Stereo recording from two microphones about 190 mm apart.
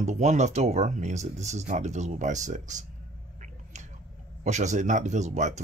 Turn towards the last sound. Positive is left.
turn(degrees=-40)  # may be behind; listen again after turning